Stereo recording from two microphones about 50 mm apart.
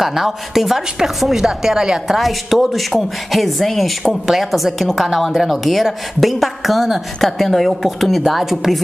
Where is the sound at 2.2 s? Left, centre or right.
Centre.